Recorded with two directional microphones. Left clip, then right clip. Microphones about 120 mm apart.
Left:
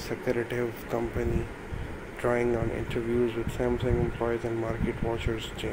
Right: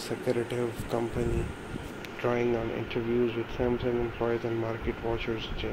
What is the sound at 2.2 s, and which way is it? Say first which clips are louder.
Speech: left 1 dB; 10° left (ahead or behind).